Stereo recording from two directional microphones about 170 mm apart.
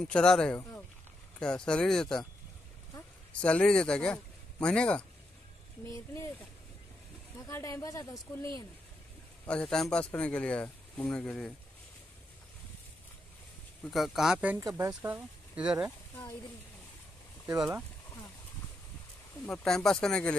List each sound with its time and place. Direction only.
0.0 s speech: 5° left (ahead or behind)
3.3 s speech: 5° left (ahead or behind)
5.9 s speech: 15° left (ahead or behind)
7.3 s speech: 20° left (ahead or behind)
9.5 s speech: 5° left (ahead or behind)
13.8 s speech: centre (ahead or behind)
14.6 s speech: 20° right (ahead or behind)
15.0 s speech: 10° right (ahead or behind)
17.6 s speech: 5° right (ahead or behind)
19.4 s speech: 5° left (ahead or behind)